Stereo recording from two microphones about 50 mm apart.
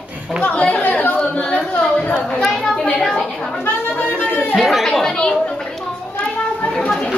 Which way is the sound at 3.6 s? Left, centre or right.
Left.